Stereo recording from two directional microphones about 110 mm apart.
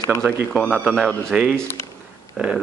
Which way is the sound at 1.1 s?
5° left (ahead or behind).